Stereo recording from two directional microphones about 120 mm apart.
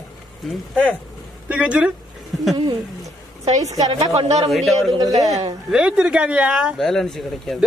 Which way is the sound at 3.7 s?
70° right (ahead or behind).